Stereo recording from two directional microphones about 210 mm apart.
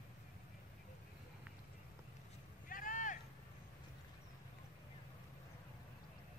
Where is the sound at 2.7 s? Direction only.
40° left (ahead or behind).